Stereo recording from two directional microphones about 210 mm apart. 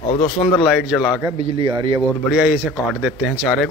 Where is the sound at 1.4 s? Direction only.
20° right (ahead or behind).